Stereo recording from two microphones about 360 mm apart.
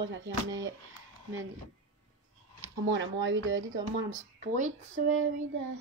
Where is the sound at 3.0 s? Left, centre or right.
Right.